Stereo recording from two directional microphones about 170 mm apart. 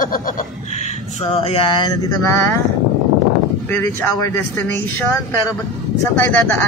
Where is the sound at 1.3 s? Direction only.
35° left (ahead or behind).